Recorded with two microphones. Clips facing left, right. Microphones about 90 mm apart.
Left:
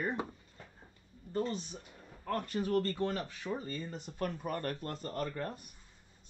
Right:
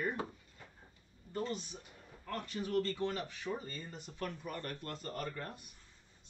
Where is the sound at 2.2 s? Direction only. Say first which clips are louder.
Left 6 dB; 50° left (ahead or behind).